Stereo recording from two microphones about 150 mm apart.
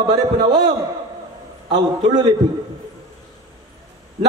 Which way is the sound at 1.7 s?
30° right (ahead or behind).